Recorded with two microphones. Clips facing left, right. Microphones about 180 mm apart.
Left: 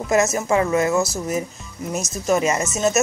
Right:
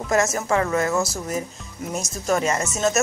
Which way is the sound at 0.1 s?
10° left (ahead or behind).